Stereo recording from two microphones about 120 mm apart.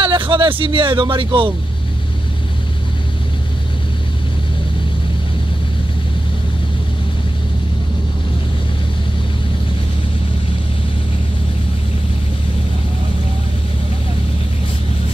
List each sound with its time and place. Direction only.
0.0 s speech: 45° right (ahead or behind)